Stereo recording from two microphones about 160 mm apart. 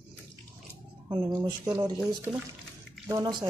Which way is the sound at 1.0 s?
25° right (ahead or behind).